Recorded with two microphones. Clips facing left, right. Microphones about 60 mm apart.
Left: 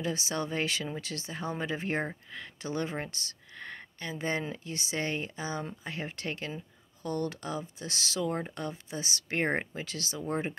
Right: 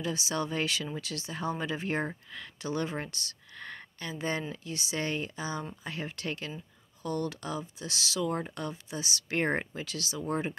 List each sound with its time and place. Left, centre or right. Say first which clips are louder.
0.0 s speech: even; left
8.3 s speech: even; left
9.4 s speech: even; centre
9.8 s speech: right 1 dB; left
10.3 s speech: even; left